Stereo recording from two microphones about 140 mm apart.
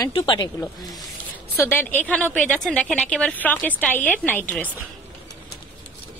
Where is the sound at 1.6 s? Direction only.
15° left (ahead or behind).